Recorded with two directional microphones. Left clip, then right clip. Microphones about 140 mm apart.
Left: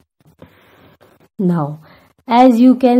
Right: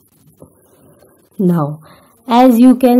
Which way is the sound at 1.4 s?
Centre (ahead or behind).